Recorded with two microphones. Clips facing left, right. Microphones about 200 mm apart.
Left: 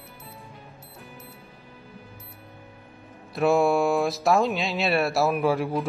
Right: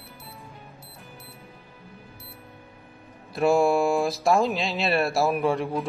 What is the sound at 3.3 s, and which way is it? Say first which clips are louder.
Speech: even; centre (ahead or behind).